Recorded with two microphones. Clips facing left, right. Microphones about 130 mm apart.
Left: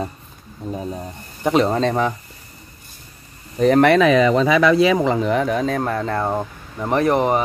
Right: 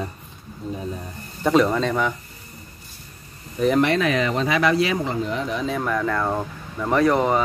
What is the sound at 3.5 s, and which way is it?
Speech, 45° left (ahead or behind).